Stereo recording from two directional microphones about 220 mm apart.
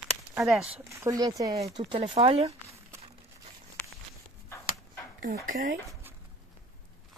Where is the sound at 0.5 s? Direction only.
5° right (ahead or behind); by 2.5 s 25° right (ahead or behind).